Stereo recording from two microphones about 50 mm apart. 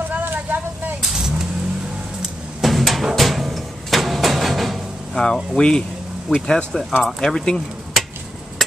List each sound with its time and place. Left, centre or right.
0.1 s vehicle: right
2.6 s music: centre
5.2 s speech: centre